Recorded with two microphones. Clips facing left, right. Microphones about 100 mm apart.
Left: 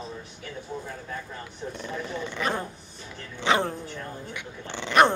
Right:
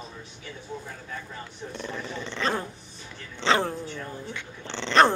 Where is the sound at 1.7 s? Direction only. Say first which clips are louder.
Left 1 dB; 10° left (ahead or behind).